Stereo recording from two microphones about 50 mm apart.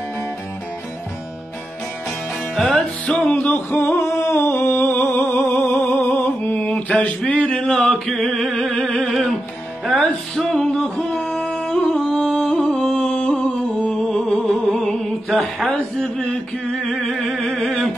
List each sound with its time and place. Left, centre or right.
2.5 s music: centre
2.8 s music: centre; by 3.9 s left
4.2 s a sound: left
5.3 s music: left
6.7 s mantra: left
7.2 s a sound: left
8.1 s music: centre
15.7 s speech: centre
16.7 s music: centre